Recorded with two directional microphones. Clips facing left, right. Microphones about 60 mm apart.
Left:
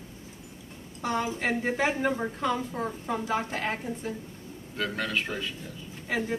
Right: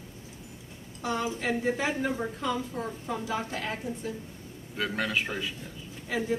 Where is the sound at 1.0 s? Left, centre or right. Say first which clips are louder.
Left 1 dB; left.